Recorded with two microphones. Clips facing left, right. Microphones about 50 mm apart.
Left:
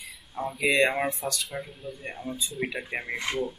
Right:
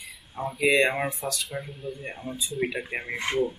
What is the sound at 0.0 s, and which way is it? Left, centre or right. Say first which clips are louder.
Speech: even; centre.